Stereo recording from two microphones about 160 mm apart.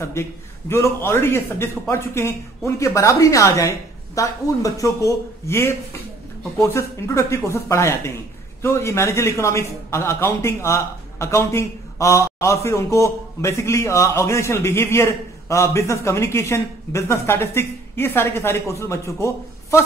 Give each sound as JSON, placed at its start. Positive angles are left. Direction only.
{"t": 0.7, "sound": "a man's voice", "side_deg": 15}